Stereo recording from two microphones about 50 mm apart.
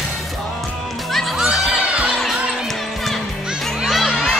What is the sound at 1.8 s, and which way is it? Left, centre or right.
Crowd, right.